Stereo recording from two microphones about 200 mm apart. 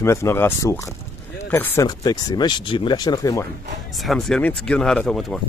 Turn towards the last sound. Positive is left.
turn(degrees=5)  # may be behind; listen again after turning